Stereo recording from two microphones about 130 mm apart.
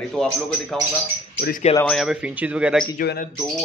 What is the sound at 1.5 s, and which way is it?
Speech, 60° left (ahead or behind).